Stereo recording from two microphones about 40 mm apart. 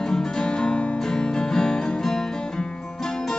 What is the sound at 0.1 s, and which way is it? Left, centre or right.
Music, centre.